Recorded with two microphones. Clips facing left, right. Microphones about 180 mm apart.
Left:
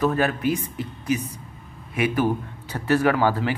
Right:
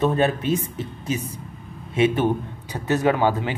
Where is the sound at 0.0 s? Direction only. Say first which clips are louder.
Right 1 dB; 25° right (ahead or behind).